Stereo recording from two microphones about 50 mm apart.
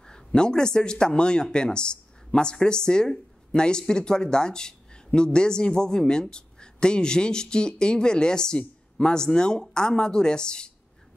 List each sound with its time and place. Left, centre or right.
0.0 s speech: centre